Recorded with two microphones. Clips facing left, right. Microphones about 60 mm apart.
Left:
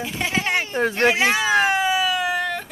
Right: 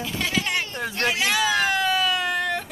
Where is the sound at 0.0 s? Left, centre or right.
Left.